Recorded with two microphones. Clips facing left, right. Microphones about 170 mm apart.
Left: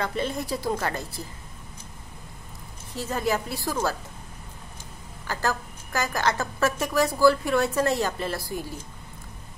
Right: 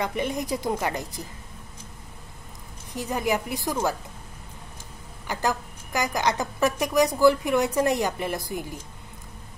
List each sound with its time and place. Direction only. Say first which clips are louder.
0.0 s a woman's voice: right 1 dB; 15° right (ahead or behind)
2.9 s a woman's voice: right 1 dB; 15° right (ahead or behind)
5.2 s a woman's voice: right 1 dB; 15° right (ahead or behind)